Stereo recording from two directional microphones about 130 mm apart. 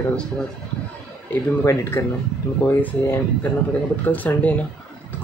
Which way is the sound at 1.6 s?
20° left (ahead or behind).